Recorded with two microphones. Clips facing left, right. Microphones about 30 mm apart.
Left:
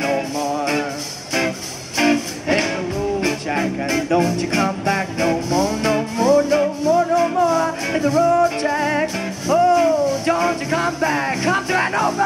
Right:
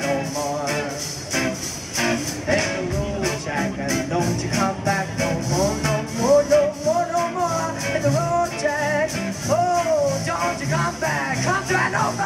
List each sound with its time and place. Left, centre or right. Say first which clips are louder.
0.4 s music: left 4 dB; left
2.0 s music: left 5 dB; left
4.1 s music: left 5 dB; left
6.9 s music: left 5 dB; left